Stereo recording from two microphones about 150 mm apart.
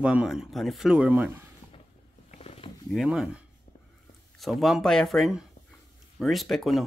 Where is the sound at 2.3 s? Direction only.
45° left (ahead or behind).